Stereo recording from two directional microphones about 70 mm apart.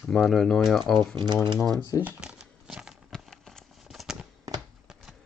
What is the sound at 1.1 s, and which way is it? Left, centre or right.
Speech, right.